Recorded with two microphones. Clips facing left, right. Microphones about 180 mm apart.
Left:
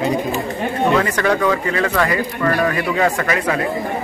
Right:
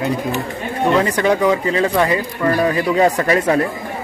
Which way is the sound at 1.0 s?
20° right (ahead or behind).